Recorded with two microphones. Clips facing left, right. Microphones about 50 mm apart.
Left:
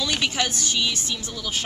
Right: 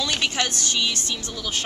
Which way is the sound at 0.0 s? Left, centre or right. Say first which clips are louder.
Even; centre.